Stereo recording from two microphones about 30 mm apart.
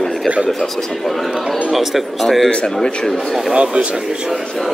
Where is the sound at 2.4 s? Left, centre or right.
Left.